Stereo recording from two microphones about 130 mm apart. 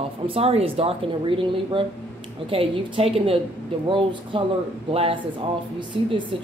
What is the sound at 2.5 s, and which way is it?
A woman's voice, 45° right (ahead or behind).